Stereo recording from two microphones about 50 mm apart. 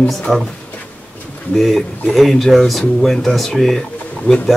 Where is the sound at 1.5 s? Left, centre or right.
Centre.